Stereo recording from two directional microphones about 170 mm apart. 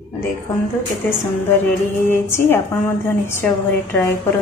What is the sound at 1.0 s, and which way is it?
A woman's voice, 15° left (ahead or behind).